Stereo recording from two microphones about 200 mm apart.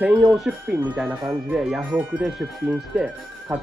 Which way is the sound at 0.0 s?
5° right (ahead or behind).